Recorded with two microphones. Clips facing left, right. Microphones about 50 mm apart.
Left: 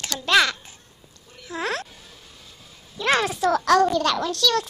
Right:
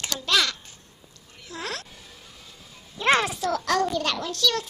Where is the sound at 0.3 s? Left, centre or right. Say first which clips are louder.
Left 5 dB; left.